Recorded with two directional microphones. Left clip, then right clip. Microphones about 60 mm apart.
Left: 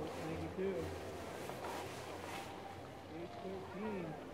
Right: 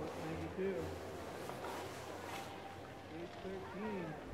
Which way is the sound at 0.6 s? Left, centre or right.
Right.